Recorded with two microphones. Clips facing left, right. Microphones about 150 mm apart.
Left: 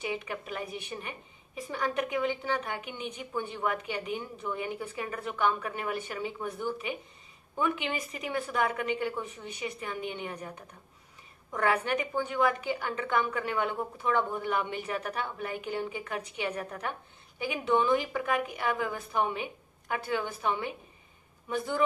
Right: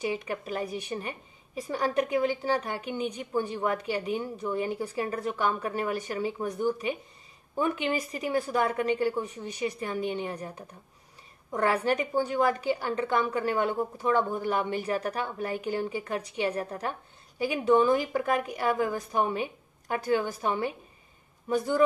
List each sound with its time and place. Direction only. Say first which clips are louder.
0.0 s a woman's voice: right 4 dB; 35° right (ahead or behind)